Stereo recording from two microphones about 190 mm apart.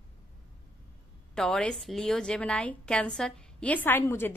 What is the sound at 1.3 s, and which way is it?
A woman's voice, 5° left (ahead or behind).